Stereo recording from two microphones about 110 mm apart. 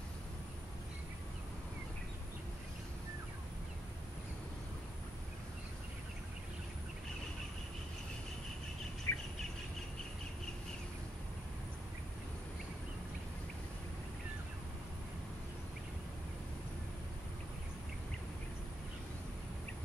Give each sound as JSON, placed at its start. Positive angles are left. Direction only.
{"t": 9.1, "sound": "bird", "side_deg": 20}